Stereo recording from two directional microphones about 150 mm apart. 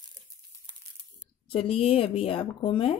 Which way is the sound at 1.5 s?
40° left (ahead or behind).